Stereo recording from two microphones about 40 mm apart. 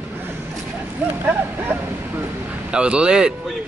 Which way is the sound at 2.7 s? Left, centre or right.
Right.